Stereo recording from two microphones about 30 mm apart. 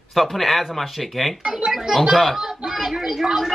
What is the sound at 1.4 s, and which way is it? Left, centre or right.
Speech, right.